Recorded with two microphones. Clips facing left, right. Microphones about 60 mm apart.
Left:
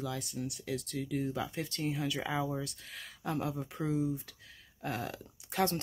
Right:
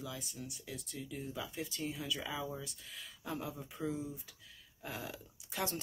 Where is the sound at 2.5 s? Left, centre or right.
Left.